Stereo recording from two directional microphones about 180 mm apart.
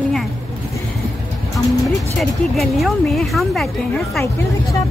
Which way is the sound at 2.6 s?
Centre (ahead or behind).